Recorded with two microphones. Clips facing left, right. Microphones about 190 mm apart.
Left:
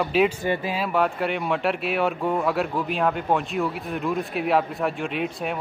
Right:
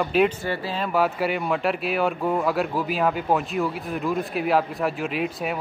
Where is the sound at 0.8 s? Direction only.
5° right (ahead or behind).